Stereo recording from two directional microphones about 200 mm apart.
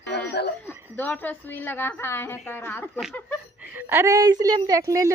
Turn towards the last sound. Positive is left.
turn(degrees=-15)  # may be behind; listen again after turning